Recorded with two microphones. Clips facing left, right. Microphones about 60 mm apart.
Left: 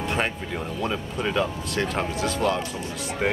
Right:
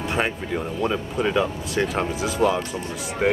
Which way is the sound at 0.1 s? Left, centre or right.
Centre.